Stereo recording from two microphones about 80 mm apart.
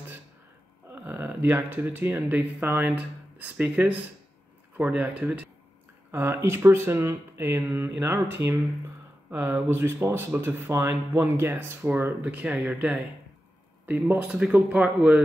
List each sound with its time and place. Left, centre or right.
0.9 s speech: right
6.1 s speech: right